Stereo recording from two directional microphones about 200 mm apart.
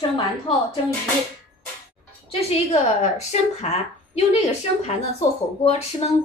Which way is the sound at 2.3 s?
30° left (ahead or behind).